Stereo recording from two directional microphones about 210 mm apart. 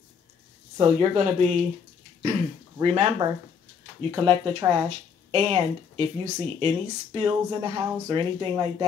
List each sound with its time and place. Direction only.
0.7 s speech: 25° right (ahead or behind)
2.8 s speech: 30° right (ahead or behind)